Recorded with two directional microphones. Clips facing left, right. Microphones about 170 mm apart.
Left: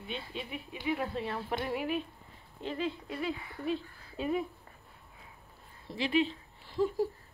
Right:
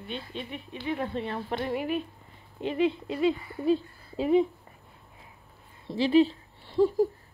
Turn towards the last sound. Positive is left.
turn(degrees=-30)  # may be behind; listen again after turning